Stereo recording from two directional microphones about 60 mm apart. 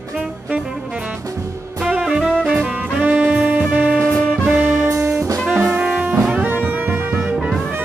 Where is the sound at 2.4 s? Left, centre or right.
Centre.